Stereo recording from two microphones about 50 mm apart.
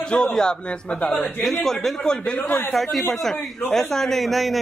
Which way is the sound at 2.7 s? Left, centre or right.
Centre.